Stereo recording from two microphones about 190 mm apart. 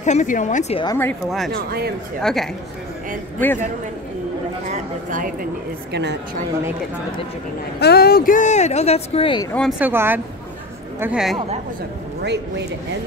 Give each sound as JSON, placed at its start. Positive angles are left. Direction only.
{"t": 0.0, "sound": "speech", "side_deg": 40}
{"t": 0.8, "sound": "speech", "side_deg": 10}
{"t": 1.5, "sound": "speech", "side_deg": -55}
{"t": 2.2, "sound": "speech", "side_deg": 0}
{"t": 4.6, "sound": "speech", "side_deg": -40}
{"t": 7.8, "sound": "speech", "side_deg": 55}
{"t": 9.5, "sound": "speech", "side_deg": 5}
{"t": 9.8, "sound": "speech", "side_deg": -10}
{"t": 11.3, "sound": "a woman's voice", "side_deg": -35}
{"t": 12.2, "sound": "a man's voice", "side_deg": -60}